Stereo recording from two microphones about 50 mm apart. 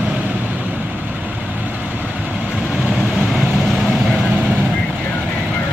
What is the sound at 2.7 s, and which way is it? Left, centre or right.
Vehicle, centre.